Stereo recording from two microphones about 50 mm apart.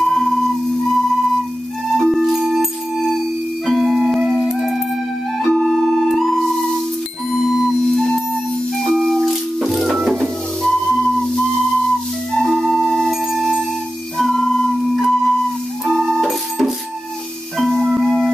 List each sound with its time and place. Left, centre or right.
0.0 s tuning fork: centre
1.9 s music: centre
2.3 s music: centre
5.4 s music: centre
5.7 s music: centre
7.2 s music: centre
7.7 s music: centre
10.6 s music: centre
12.6 s music: centre
14.1 s music: centre
15.8 s keyboard: centre
17.6 s music: centre